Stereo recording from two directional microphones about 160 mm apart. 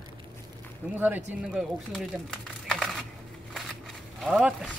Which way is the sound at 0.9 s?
10° right (ahead or behind).